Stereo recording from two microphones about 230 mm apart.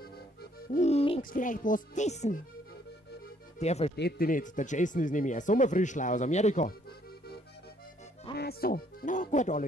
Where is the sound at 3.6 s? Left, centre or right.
Left.